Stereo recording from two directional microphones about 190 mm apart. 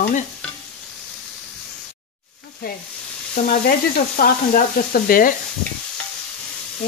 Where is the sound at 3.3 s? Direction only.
50° left (ahead or behind).